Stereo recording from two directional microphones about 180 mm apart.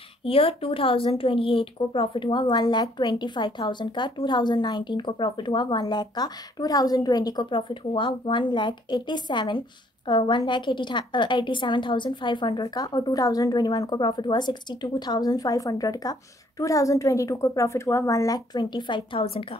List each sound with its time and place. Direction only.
0.2 s a woman's voice: 30° left (ahead or behind)